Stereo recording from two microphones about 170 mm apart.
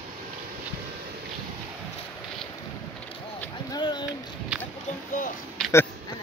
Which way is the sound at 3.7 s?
25° left (ahead or behind).